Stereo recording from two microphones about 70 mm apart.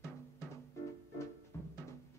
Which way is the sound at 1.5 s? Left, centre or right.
Left.